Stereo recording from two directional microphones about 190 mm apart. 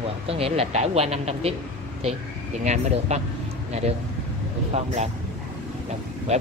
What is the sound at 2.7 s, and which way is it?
Speech, 35° right (ahead or behind).